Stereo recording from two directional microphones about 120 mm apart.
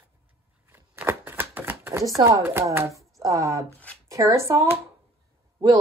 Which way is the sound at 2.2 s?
25° right (ahead or behind).